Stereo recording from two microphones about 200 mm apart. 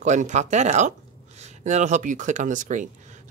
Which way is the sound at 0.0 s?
35° right (ahead or behind).